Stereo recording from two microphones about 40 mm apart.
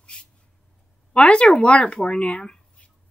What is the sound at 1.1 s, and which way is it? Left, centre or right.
Speech, left.